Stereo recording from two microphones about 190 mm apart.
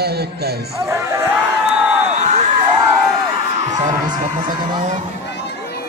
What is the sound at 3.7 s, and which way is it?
Speech, 20° right (ahead or behind).